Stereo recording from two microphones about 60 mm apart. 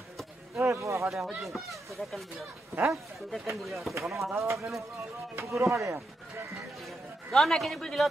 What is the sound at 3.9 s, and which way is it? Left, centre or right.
Speech, right.